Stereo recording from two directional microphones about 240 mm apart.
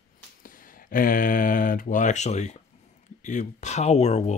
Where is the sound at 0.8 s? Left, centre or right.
Left.